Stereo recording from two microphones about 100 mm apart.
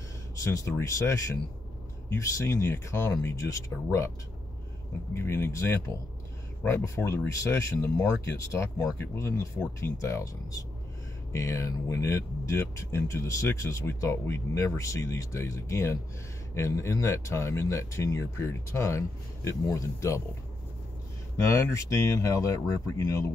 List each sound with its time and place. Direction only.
0.4 s speech: 30° left (ahead or behind)
5.1 s speech: 25° left (ahead or behind)
21.5 s speech: 30° left (ahead or behind)